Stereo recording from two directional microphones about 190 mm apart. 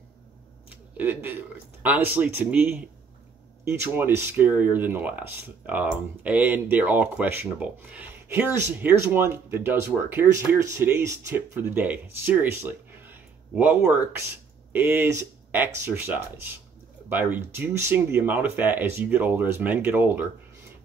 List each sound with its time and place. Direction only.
0.9 s speech: 10° right (ahead or behind)